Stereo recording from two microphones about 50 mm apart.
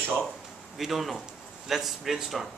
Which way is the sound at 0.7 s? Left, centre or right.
Centre.